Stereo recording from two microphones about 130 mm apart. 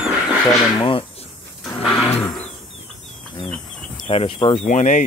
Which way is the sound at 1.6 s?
Centre (ahead or behind).